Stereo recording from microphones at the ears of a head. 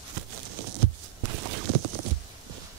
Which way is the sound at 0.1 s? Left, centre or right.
Right.